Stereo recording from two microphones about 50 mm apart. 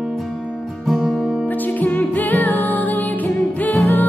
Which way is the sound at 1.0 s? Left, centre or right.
Centre.